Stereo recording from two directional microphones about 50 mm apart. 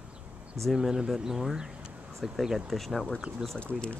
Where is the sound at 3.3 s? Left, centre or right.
Right.